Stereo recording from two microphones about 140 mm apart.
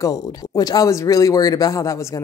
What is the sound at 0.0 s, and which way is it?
Speech, 25° left (ahead or behind).